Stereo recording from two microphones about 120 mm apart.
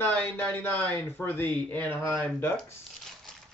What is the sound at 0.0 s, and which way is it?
A man's voice, 15° left (ahead or behind).